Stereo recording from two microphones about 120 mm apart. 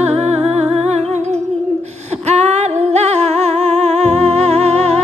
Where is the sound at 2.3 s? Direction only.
70° right (ahead or behind).